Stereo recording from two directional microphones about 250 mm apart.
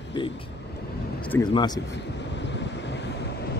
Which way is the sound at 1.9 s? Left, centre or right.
Left.